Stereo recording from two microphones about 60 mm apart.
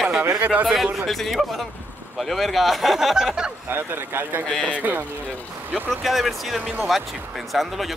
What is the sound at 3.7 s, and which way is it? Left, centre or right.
Speech, right.